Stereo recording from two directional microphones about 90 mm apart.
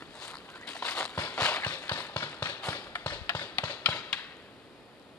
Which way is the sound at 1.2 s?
10° left (ahead or behind).